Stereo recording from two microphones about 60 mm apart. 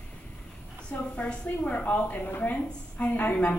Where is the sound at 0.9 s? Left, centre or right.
Left.